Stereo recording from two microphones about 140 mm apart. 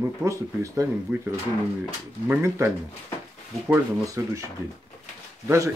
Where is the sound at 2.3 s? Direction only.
20° right (ahead or behind).